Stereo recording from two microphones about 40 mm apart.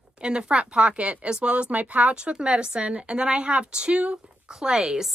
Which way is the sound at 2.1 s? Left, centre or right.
Right.